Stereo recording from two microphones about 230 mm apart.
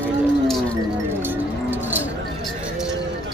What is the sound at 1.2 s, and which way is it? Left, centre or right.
Music, centre.